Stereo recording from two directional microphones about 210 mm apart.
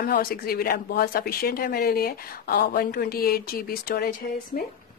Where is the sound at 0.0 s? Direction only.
45° left (ahead or behind).